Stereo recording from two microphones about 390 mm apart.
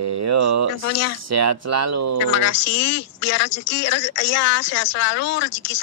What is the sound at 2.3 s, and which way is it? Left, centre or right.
Speech, left.